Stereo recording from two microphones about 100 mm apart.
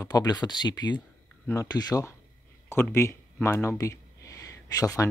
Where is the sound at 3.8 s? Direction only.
30° left (ahead or behind).